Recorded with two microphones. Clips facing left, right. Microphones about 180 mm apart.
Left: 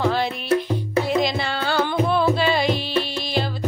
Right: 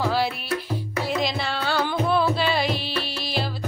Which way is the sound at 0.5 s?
30° left (ahead or behind).